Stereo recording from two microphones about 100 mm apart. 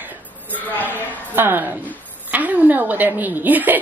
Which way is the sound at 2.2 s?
15° right (ahead or behind).